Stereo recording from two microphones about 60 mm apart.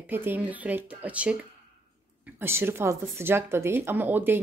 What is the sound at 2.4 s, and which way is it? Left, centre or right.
A woman's voice, right.